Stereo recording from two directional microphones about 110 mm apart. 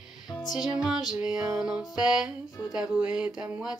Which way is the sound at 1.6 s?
5° right (ahead or behind).